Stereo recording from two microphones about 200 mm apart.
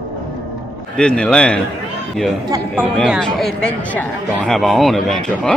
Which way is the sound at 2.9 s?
Centre (ahead or behind).